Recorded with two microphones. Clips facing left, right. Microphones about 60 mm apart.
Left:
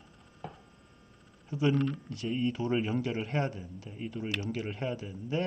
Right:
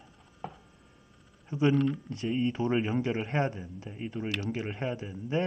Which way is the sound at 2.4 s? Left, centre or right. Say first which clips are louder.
Right 2 dB; right.